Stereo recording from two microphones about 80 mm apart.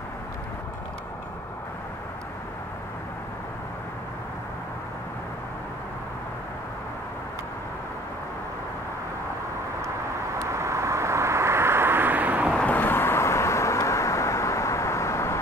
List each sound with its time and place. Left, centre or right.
10.4 s vehicle: right
12.5 s vehicle: left